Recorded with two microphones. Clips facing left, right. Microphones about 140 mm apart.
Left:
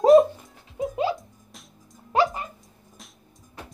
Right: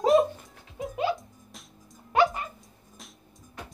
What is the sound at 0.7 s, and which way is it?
Music, 30° left (ahead or behind).